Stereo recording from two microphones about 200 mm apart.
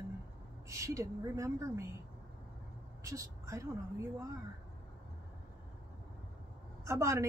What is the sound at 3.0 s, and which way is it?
Speech, 15° right (ahead or behind).